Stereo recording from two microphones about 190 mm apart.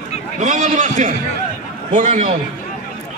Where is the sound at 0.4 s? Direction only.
40° right (ahead or behind).